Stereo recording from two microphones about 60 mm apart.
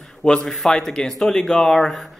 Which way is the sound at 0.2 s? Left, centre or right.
Centre.